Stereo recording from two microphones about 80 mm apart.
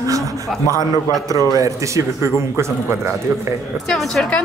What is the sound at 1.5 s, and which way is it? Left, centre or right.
A man's voice, right.